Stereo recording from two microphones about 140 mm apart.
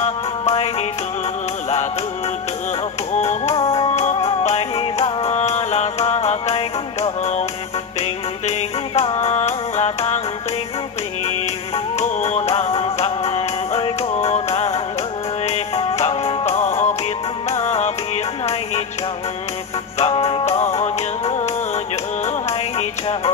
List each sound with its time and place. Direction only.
0.0 s music: 50° left (ahead or behind)
3.1 s music: 55° left (ahead or behind)
3.5 s music: 40° left (ahead or behind); by 7.4 s 55° left (ahead or behind)
8.5 s music: 50° left (ahead or behind)
12.0 s music: 50° left (ahead or behind)
20.0 s music: 45° left (ahead or behind)